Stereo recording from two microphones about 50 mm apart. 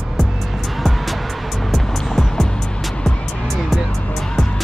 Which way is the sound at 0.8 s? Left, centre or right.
Centre.